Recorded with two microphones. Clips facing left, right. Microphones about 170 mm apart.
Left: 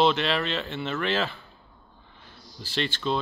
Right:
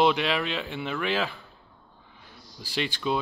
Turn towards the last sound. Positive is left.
turn(degrees=-10)  # may be behind; listen again after turning